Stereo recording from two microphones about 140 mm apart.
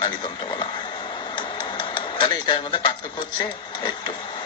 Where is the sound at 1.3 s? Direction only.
35° left (ahead or behind).